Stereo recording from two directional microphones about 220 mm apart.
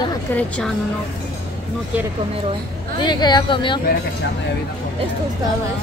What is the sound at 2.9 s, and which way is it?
Speech, 20° left (ahead or behind).